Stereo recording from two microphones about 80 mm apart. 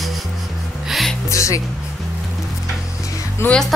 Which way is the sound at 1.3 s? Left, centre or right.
Left.